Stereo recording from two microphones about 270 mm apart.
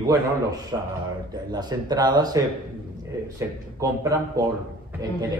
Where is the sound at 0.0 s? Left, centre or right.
Centre.